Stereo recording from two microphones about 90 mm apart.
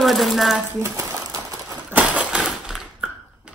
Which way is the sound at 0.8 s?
35° right (ahead or behind).